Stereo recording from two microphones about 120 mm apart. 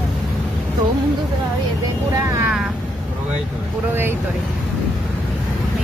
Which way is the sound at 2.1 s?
25° right (ahead or behind).